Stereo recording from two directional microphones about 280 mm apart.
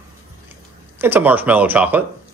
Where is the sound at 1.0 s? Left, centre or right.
Centre.